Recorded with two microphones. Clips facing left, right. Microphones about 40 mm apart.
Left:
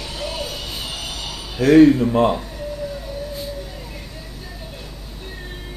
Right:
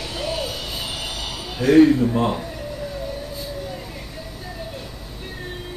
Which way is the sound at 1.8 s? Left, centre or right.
Left.